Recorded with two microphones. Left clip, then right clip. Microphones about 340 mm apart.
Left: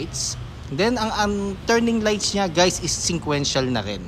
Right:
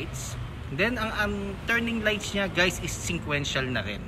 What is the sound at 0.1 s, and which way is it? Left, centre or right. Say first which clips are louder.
Speech: left 11 dB; centre.